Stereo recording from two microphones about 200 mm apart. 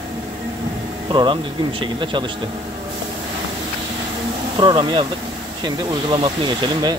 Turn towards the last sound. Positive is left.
turn(degrees=-25)  # may be behind; listen again after turning